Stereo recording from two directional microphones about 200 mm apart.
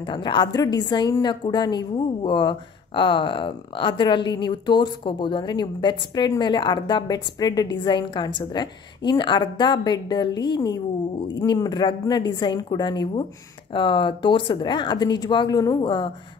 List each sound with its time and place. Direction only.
0.0 s a woman's voice: 25° left (ahead or behind)